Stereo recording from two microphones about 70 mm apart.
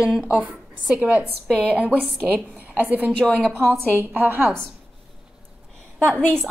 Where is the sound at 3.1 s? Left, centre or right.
Centre.